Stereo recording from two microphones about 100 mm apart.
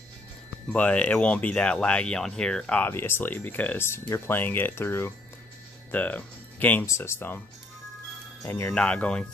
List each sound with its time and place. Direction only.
0.7 s speech: 15° left (ahead or behind)
2.9 s speech: 20° left (ahead or behind)
8.5 s speech: 20° left (ahead or behind)
8.7 s speech: 10° left (ahead or behind)